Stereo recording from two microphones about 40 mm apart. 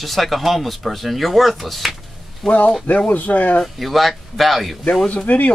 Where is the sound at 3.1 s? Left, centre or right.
Left.